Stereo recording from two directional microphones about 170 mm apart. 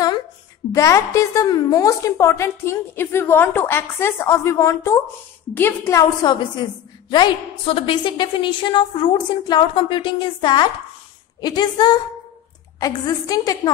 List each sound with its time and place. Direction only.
0.7 s a woman's voice: 20° left (ahead or behind)